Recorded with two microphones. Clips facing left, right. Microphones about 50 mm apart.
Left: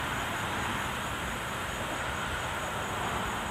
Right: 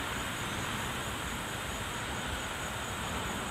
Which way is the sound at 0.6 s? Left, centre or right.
Left.